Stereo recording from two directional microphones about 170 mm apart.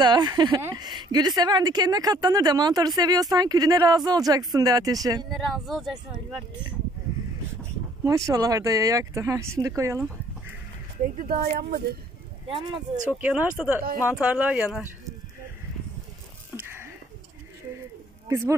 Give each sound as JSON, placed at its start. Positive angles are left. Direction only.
{"t": 0.0, "sound": "a woman's voice", "side_deg": -25}
{"t": 5.3, "sound": "speech", "side_deg": 0}
{"t": 6.1, "sound": "a woman's voice", "side_deg": -25}
{"t": 8.3, "sound": "a woman's voice", "side_deg": -20}
{"t": 11.2, "sound": "speech", "side_deg": -65}
{"t": 12.4, "sound": "a woman's voice", "side_deg": -30}
{"t": 13.1, "sound": "speech", "side_deg": -10}
{"t": 16.5, "sound": "a sound", "side_deg": -15}
{"t": 18.3, "sound": "speech", "side_deg": -15}